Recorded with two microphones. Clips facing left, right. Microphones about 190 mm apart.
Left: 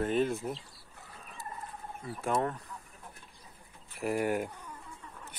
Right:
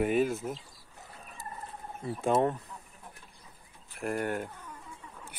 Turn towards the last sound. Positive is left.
turn(degrees=10)  # may be behind; listen again after turning